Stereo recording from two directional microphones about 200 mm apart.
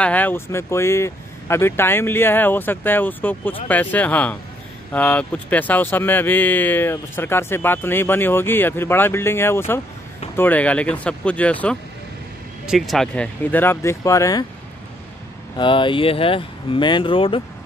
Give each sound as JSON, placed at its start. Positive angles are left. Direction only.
{"t": 0.0, "sound": "speech", "side_deg": 10}
{"t": 15.5, "sound": "speech", "side_deg": 25}